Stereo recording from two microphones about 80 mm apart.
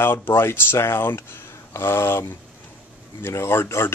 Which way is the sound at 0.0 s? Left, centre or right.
Left.